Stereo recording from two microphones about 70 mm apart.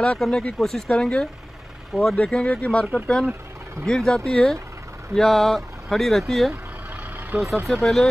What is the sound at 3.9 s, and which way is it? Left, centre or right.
Speech, centre.